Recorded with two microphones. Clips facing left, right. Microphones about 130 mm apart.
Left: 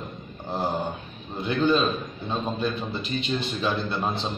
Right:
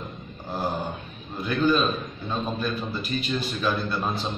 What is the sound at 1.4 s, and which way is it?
A man's voice, 25° left (ahead or behind).